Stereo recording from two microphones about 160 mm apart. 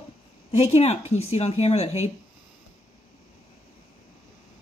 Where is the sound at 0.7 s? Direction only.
40° left (ahead or behind).